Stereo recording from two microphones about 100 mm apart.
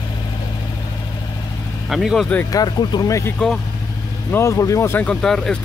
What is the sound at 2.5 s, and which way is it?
Speech, 45° left (ahead or behind).